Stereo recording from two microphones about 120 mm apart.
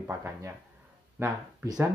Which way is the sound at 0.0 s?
20° right (ahead or behind).